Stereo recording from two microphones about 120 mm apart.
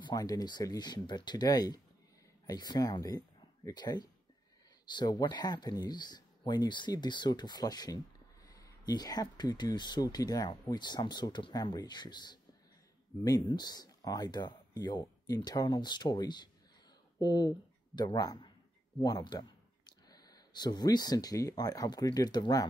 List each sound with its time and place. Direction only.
0.0 s speech: 30° left (ahead or behind)